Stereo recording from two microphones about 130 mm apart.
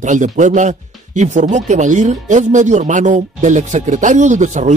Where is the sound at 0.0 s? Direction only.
75° right (ahead or behind).